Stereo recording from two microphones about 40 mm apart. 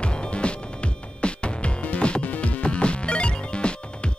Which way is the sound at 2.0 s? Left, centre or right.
Left.